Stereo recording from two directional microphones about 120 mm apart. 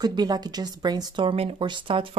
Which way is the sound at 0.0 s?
35° right (ahead or behind).